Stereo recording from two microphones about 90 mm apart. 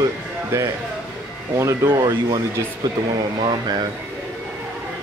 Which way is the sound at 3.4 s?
65° right (ahead or behind).